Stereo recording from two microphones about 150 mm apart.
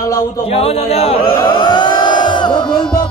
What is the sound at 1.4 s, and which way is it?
Chant, 30° left (ahead or behind).